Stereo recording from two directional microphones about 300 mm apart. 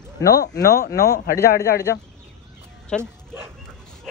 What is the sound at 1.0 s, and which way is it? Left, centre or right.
Speech, left.